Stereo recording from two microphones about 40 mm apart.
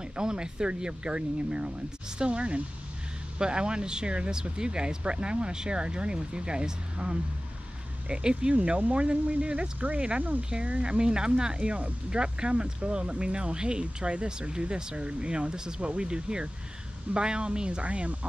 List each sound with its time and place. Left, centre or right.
0.1 s speech: centre